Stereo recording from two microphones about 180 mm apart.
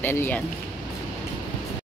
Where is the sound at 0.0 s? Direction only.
10° left (ahead or behind).